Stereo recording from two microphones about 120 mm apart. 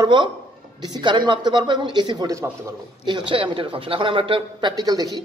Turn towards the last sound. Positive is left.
turn(degrees=-30)  # may be behind; listen again after turning